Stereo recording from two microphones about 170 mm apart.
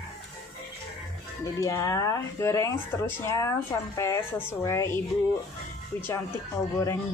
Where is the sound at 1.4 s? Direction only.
20° left (ahead or behind).